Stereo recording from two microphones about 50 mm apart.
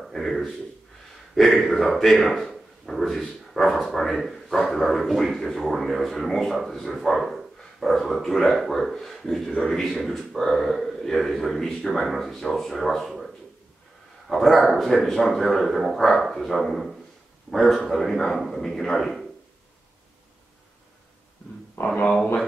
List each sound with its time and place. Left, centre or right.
0.0 s speech: centre
14.3 s a man's voice: centre
21.8 s speech: left